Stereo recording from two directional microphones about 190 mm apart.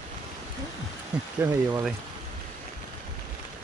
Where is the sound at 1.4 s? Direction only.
10° right (ahead or behind).